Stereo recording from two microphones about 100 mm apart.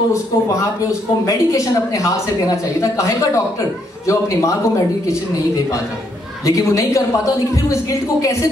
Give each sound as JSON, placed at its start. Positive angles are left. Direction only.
{"t": 1.2, "sound": "a woman's voice", "side_deg": 35}
{"t": 4.1, "sound": "a woman's voice", "side_deg": 30}
{"t": 6.4, "sound": "a woman's voice", "side_deg": 35}